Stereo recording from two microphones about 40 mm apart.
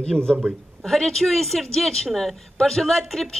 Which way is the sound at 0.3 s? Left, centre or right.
Centre.